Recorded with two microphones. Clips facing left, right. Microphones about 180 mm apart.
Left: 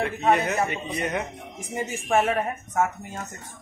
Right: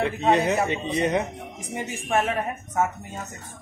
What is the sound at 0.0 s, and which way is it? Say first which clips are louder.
Speech: right 1 dB; 20° right (ahead or behind).